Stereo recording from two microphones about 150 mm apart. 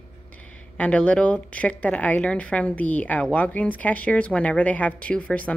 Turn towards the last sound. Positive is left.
turn(degrees=10)  # may be behind; listen again after turning